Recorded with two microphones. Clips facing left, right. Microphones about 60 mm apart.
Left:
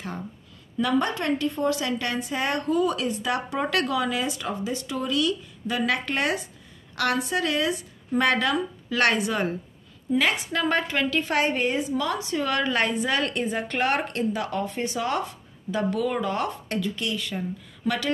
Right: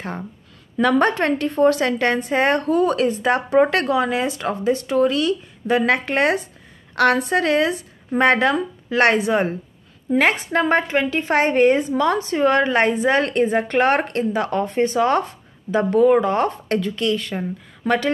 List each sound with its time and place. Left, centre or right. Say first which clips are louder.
0.7 s a woman's voice: right 7 dB; right